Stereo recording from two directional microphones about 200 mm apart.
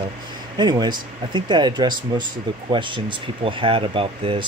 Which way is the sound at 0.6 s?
20° right (ahead or behind).